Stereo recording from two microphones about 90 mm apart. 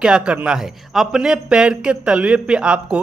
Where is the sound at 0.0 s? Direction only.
10° right (ahead or behind).